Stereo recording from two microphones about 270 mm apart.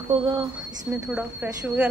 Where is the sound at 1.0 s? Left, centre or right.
Centre.